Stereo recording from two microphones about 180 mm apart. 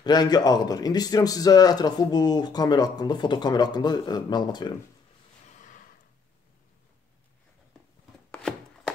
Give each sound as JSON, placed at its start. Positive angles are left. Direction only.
{"t": 0.0, "sound": "speech", "side_deg": 25}
{"t": 8.3, "sound": "chopping", "side_deg": 5}